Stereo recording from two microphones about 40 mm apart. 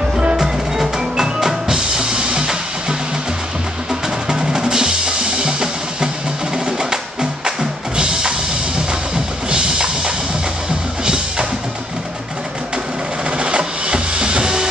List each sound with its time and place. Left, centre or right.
0.4 s music: centre
4.3 s percussion: centre
6.5 s music: centre
13.4 s music: right